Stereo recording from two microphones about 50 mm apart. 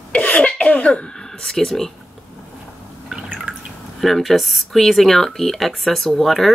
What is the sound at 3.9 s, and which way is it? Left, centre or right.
Speech, centre.